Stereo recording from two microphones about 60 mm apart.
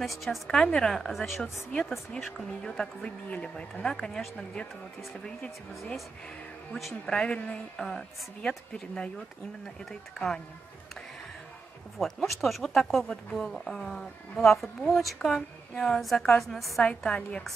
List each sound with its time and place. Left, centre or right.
0.0 s speech: centre
0.6 s a woman's voice: centre
1.4 s a woman's voice: centre
3.8 s a woman's voice: centre
7.1 s a woman's voice: centre
12.0 s a woman's voice: centre
16.8 s a woman's voice: centre